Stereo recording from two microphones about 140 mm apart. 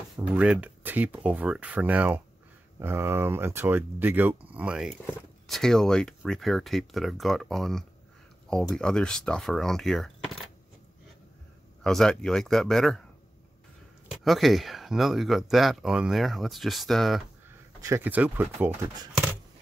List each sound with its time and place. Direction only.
0.3 s speech: 10° right (ahead or behind)
11.8 s speech: 5° left (ahead or behind)
14.2 s speech: centre (ahead or behind)
17.7 s speech: 20° right (ahead or behind)